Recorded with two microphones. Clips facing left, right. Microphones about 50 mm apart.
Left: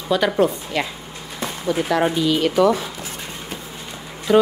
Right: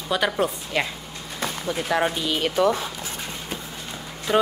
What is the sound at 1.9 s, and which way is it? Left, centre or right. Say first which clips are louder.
Music: left 2 dB; centre.